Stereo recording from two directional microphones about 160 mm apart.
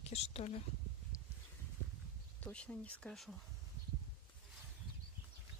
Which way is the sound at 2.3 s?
10° left (ahead or behind).